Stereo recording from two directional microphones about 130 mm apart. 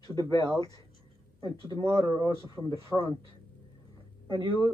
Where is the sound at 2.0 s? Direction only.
30° right (ahead or behind).